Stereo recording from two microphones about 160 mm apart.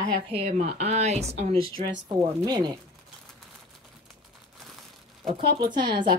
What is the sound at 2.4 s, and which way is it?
Speech, 25° right (ahead or behind).